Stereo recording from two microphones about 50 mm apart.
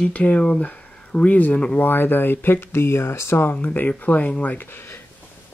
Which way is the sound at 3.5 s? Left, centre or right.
Left.